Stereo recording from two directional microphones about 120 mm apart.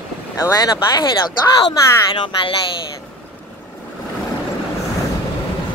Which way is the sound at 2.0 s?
40° left (ahead or behind).